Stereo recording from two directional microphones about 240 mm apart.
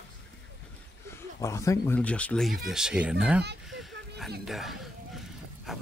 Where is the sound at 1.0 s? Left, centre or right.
Centre.